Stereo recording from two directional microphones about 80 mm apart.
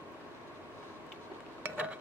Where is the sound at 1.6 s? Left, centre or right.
Centre.